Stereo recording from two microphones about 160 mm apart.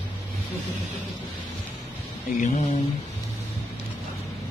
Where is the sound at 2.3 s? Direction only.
55° left (ahead or behind).